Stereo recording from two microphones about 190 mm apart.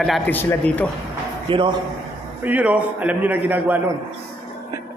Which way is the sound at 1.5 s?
25° right (ahead or behind).